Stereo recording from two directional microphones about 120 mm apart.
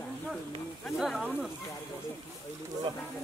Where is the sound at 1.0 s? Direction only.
Centre (ahead or behind).